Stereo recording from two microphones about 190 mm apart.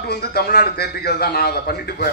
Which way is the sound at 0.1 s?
55° left (ahead or behind).